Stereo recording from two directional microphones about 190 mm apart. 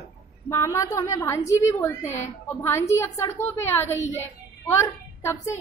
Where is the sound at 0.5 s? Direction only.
15° left (ahead or behind).